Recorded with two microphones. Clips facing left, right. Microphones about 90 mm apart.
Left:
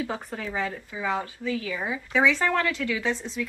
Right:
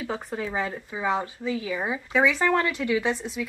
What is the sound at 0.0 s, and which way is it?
Speech, centre (ahead or behind).